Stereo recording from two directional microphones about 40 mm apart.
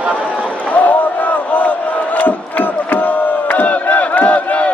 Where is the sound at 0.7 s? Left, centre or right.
Left.